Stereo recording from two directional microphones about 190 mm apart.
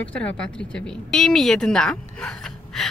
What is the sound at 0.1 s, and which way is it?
A woman's voice, 5° left (ahead or behind).